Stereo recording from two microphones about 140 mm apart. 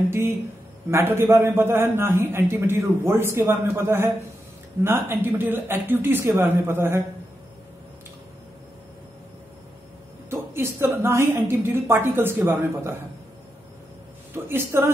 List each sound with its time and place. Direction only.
0.8 s a man's voice: 20° right (ahead or behind)
10.3 s a man's voice: 15° right (ahead or behind)
14.3 s speech: 15° right (ahead or behind)